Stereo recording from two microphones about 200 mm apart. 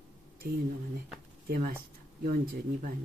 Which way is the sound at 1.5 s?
50° right (ahead or behind).